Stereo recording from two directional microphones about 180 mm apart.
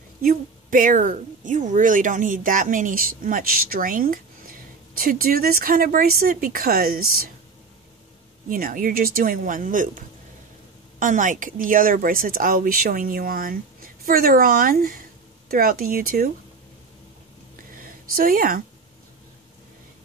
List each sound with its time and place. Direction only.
0.2 s a woman's voice: 50° right (ahead or behind)
8.5 s a woman's voice: 50° right (ahead or behind)
17.7 s a sound: 50° right (ahead or behind)